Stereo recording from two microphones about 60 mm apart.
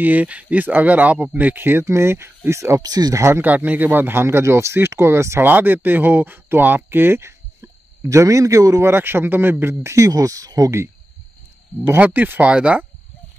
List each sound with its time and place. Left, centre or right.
0.0 s speech: right
1.9 s speech: right
2.8 s speech: right
3.2 s speech: right
3.4 s speech: right
5.4 s speech: right
8.8 s speech: right
12.0 s speech: right